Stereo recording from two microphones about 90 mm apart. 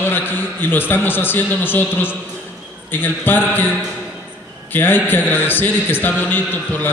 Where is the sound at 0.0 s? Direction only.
20° left (ahead or behind).